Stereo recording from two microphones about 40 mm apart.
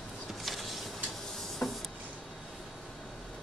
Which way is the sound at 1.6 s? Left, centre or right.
Left.